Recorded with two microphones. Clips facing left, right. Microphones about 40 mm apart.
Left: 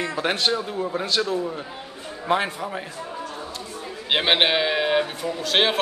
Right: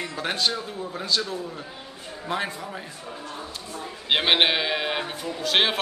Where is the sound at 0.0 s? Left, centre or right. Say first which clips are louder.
Left 5 dB; left.